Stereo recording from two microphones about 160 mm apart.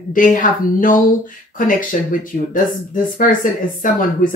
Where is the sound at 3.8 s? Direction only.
55° left (ahead or behind).